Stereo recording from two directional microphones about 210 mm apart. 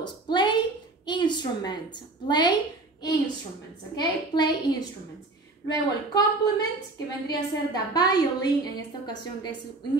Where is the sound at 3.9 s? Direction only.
20° left (ahead or behind).